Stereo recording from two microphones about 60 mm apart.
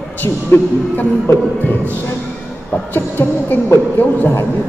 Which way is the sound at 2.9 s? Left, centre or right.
Left.